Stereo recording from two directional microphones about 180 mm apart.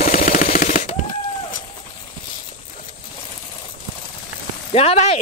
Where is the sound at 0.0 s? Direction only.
50° left (ahead or behind).